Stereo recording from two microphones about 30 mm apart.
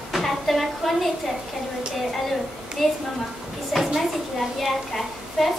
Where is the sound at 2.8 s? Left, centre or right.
Centre.